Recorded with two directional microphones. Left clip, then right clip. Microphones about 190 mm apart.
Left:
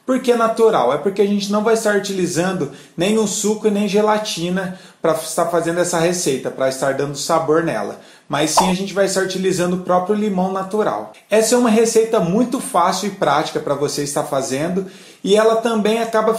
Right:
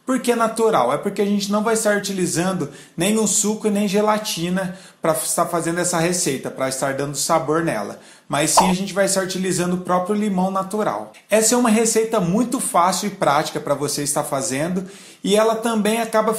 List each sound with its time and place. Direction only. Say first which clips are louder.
0.0 s speech: left 3 dB; 25° right (ahead or behind)